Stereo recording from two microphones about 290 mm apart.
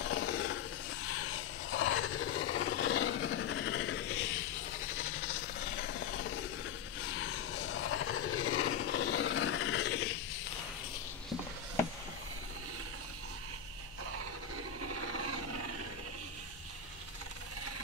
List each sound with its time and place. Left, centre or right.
0.0 s a sound: left
4.9 s rub: left
14.8 s roar: right